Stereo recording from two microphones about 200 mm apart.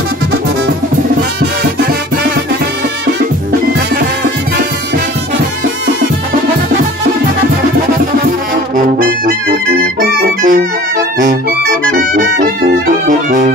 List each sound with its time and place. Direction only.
8.7 s brass instrument: 45° right (ahead or behind)
9.9 s music: 45° right (ahead or behind)
12.4 s music: 40° right (ahead or behind)